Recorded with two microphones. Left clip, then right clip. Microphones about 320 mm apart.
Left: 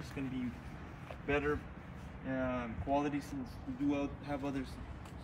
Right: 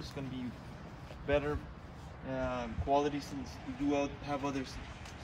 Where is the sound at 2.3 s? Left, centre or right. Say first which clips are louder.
Right 1 dB; centre.